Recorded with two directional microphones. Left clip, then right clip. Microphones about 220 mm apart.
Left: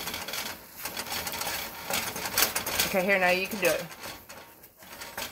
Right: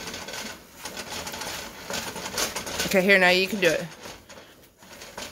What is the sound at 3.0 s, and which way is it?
Speech, 35° right (ahead or behind).